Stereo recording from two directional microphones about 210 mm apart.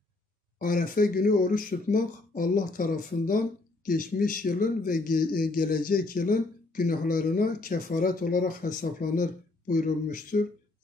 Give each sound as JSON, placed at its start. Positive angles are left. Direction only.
{"t": 0.6, "sound": "speech", "side_deg": 40}